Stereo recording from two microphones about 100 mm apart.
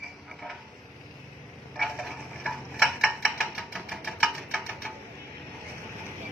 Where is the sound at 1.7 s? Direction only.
Centre (ahead or behind).